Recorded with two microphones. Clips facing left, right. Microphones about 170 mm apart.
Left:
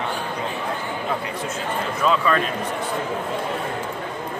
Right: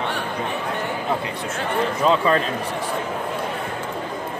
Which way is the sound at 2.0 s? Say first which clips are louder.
Right 1 dB; 30° right (ahead or behind).